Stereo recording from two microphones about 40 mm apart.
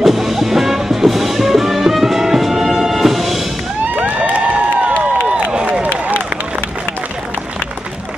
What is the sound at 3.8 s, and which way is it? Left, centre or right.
Crowd, right.